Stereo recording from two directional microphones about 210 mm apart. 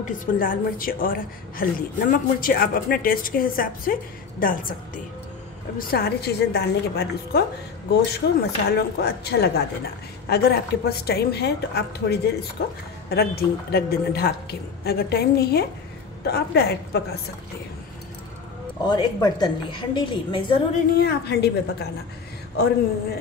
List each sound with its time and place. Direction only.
0.4 s a woman's voice: 40° left (ahead or behind)
18.9 s a woman's voice: 20° left (ahead or behind)
20.9 s a woman's voice: 50° left (ahead or behind)